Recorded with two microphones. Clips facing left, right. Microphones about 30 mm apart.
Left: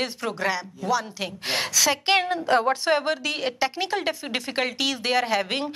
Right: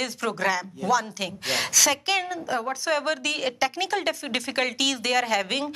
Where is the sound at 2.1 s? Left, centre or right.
Left.